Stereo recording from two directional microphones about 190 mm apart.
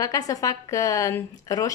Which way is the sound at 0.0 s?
20° left (ahead or behind).